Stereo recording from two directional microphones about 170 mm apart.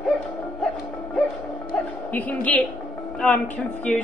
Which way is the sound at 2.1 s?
10° left (ahead or behind).